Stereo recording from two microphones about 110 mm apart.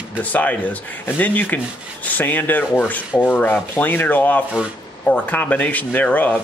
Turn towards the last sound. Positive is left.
turn(degrees=15)  # may be behind; listen again after turning